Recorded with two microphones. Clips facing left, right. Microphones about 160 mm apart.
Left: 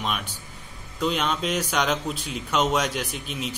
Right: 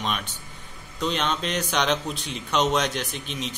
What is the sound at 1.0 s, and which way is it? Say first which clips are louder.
A man's voice: left 1 dB; 5° left (ahead or behind).